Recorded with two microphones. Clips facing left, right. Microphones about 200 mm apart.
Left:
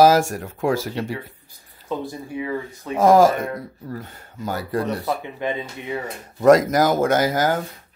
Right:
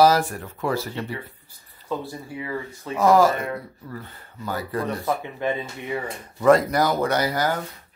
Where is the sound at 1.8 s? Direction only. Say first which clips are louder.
Left 2 dB; 15° left (ahead or behind).